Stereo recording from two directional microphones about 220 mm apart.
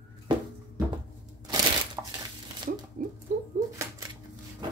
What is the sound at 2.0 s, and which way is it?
Crumpling, 15° right (ahead or behind).